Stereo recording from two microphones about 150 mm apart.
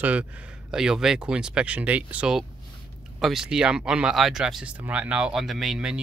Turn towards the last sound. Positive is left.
turn(degrees=-5)  # may be behind; listen again after turning